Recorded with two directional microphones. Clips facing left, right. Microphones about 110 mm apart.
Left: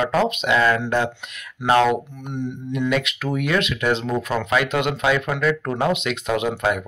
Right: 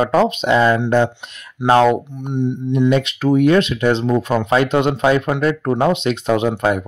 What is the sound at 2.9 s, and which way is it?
Speech, 30° right (ahead or behind).